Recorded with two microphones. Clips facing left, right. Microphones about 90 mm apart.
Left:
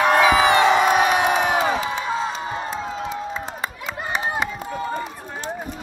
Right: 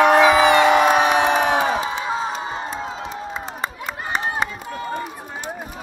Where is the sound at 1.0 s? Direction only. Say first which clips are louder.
Right 1 dB; 35° right (ahead or behind).